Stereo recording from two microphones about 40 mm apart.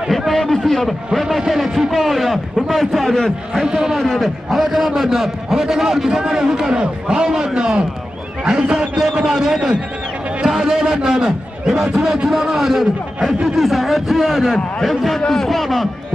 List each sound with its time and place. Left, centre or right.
0.3 s a man's voice: centre
3.6 s a man's voice: centre
4.0 s a man's voice: centre